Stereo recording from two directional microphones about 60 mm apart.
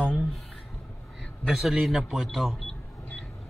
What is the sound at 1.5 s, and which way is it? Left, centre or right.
A man's voice, centre.